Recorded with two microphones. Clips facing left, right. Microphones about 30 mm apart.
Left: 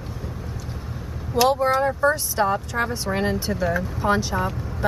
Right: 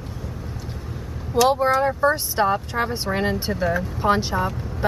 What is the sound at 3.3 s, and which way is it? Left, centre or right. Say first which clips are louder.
Speech: right 1 dB; right.